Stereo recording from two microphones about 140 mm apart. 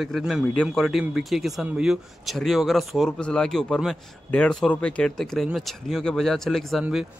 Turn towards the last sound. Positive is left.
turn(degrees=0)  # may be behind; listen again after turning